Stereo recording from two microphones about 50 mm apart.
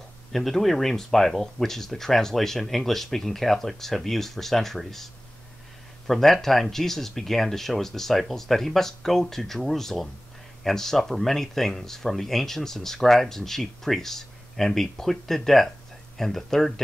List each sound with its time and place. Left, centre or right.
0.3 s speech: centre